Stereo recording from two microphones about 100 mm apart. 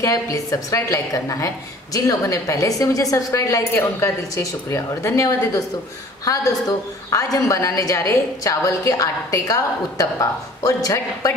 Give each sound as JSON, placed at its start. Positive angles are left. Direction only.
{"t": 0.0, "sound": "a woman's voice", "side_deg": 35}